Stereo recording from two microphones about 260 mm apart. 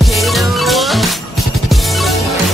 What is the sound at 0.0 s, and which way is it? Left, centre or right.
Music, centre.